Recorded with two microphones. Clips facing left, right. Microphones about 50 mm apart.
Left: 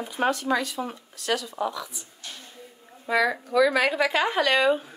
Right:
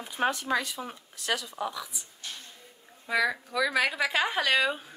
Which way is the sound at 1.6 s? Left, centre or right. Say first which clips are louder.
Left 5 dB; centre.